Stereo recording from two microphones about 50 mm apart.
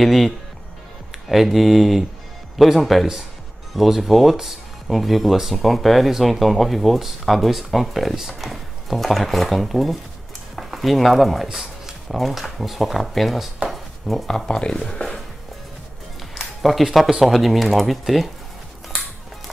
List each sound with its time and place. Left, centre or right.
0.0 s speech: centre
1.3 s speech: centre
13.7 s a sound: centre
14.2 s speech: centre
16.3 s music: centre
16.8 s speech: centre
18.9 s music: centre